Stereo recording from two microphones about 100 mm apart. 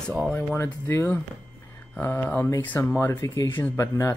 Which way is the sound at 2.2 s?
20° left (ahead or behind).